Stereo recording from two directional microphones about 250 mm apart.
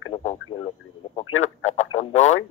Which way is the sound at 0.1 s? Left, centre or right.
Left.